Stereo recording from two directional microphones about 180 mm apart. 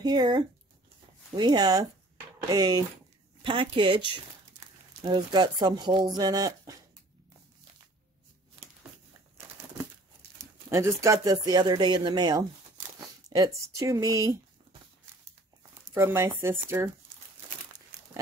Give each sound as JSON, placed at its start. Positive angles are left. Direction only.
{"t": 0.0, "sound": "speech", "side_deg": -25}
{"t": 10.7, "sound": "speech", "side_deg": -15}
{"t": 15.9, "sound": "speech", "side_deg": -15}